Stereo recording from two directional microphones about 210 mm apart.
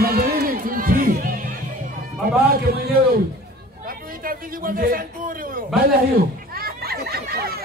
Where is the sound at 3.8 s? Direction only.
40° right (ahead or behind).